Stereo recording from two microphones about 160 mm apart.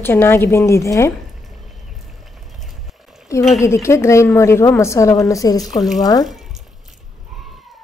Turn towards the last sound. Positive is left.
turn(degrees=25)  # may be behind; listen again after turning